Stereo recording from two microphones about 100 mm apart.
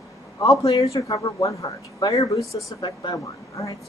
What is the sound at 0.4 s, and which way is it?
Speech, 35° left (ahead or behind).